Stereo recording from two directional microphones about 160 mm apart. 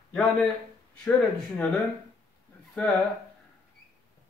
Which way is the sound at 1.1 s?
10° left (ahead or behind).